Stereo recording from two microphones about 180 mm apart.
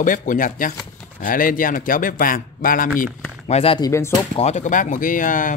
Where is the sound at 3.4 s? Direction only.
35° left (ahead or behind).